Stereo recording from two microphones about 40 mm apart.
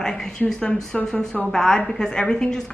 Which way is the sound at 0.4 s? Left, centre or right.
Centre.